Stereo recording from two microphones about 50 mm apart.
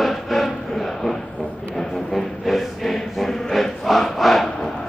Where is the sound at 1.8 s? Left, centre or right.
Centre.